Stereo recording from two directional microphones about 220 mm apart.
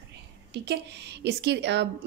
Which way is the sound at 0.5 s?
50° right (ahead or behind).